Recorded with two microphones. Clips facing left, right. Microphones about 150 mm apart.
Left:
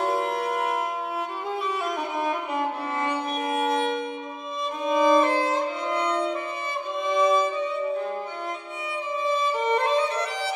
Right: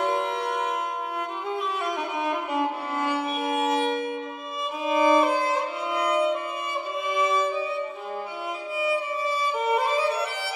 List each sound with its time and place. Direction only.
0.0 s music: centre (ahead or behind)
1.5 s violin: centre (ahead or behind)
4.8 s music: 5° right (ahead or behind)
8.8 s music: 5° right (ahead or behind)